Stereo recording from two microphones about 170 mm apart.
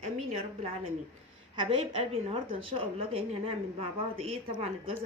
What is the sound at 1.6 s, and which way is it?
A woman's voice, 35° right (ahead or behind).